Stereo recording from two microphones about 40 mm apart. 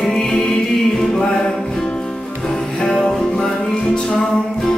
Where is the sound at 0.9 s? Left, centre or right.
Centre.